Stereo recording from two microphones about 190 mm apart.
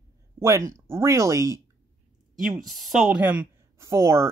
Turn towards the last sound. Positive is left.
turn(degrees=-15)  # may be behind; listen again after turning